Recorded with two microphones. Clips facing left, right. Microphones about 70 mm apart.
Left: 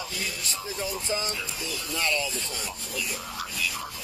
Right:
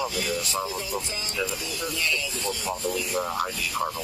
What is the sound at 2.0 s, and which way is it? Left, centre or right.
Speech, left.